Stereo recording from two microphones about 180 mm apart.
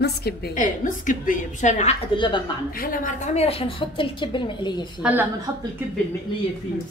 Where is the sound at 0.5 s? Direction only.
45° left (ahead or behind).